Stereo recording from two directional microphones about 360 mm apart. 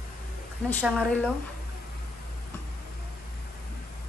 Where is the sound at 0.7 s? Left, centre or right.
Centre.